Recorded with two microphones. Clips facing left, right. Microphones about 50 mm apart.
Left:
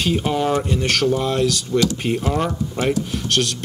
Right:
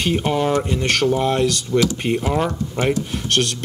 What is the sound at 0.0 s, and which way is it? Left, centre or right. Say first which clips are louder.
Speech: right 1 dB; centre.